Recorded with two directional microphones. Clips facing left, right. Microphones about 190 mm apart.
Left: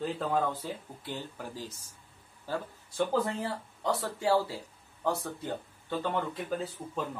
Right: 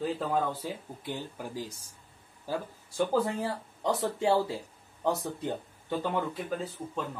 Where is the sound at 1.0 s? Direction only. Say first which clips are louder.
Right 2 dB; 15° right (ahead or behind).